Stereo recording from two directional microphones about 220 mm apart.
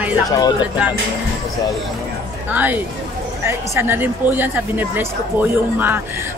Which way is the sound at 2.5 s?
10° right (ahead or behind).